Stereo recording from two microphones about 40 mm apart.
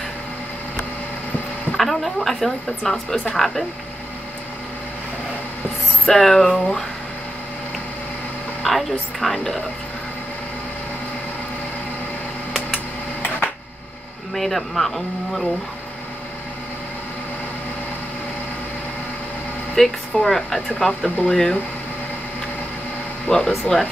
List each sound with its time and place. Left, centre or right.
1.7 s speech: centre
6.0 s speech: centre
8.6 s speech: centre
14.3 s speech: centre
19.7 s a woman's voice: centre
21.0 s speech: left
23.3 s speech: centre